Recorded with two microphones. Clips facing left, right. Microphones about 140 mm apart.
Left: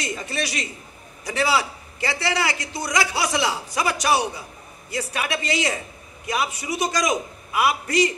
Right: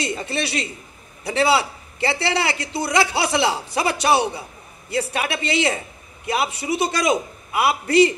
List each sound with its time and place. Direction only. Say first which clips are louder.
0.0 s a man's voice: right 3 dB; 30° right (ahead or behind)